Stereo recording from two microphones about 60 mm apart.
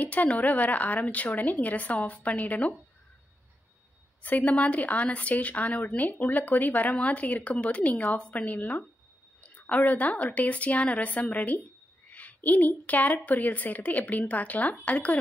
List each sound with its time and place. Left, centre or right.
0.0 s a woman's voice: left
4.2 s a woman's voice: left